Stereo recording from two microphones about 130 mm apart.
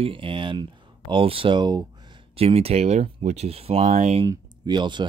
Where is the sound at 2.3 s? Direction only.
50° right (ahead or behind).